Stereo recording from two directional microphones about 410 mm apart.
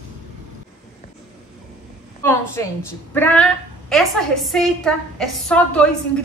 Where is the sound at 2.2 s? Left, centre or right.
Centre.